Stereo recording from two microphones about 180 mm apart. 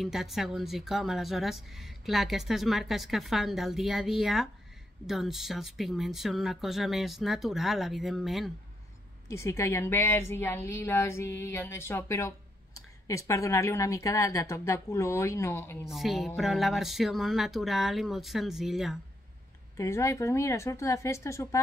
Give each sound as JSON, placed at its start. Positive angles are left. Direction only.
{"t": 0.0, "sound": "speech", "side_deg": 0}
{"t": 9.3, "sound": "speech", "side_deg": 15}
{"t": 15.9, "sound": "speech", "side_deg": 0}
{"t": 19.8, "sound": "speech", "side_deg": 15}